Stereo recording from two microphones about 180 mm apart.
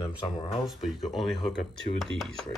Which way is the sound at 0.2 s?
30° left (ahead or behind).